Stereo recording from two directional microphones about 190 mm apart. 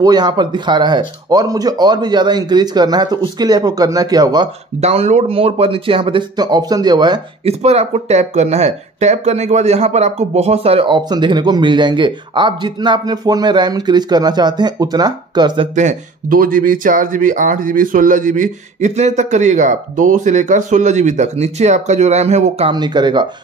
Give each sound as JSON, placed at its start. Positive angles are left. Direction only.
{"t": 0.0, "sound": "speech", "side_deg": -20}
{"t": 4.7, "sound": "speech", "side_deg": -35}
{"t": 15.7, "sound": "speech", "side_deg": -40}